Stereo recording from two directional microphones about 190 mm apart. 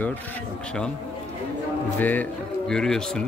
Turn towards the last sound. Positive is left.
turn(degrees=5)  # may be behind; listen again after turning